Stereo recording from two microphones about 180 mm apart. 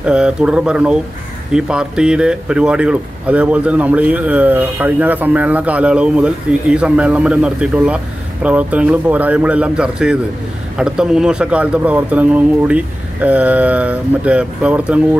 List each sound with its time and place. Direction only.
0.0 s speech: 5° right (ahead or behind)